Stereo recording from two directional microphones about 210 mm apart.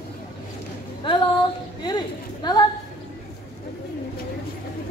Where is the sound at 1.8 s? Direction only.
20° left (ahead or behind).